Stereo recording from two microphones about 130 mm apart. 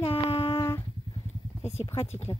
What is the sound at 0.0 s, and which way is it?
Humming, 45° left (ahead or behind).